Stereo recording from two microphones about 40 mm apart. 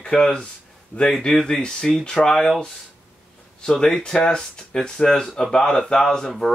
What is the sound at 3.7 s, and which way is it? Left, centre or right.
Speech, centre.